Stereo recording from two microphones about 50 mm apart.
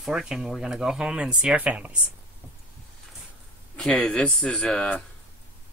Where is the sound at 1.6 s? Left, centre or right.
Right.